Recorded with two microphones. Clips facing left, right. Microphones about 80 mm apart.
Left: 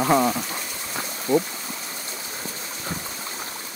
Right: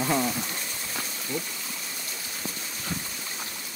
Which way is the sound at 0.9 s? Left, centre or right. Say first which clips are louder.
Left 12 dB; left.